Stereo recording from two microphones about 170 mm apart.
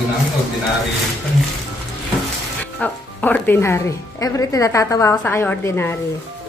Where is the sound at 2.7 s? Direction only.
10° left (ahead or behind).